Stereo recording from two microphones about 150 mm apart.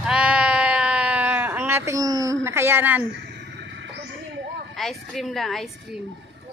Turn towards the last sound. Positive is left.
turn(degrees=0)  # may be behind; listen again after turning